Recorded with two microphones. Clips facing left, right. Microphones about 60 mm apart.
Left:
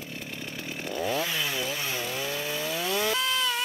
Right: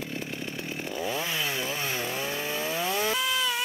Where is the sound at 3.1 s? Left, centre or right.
Centre.